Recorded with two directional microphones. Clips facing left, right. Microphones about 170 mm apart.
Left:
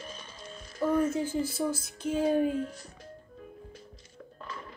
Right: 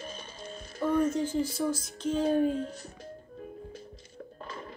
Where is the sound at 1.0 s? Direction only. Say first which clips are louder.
Right 1 dB; 10° left (ahead or behind).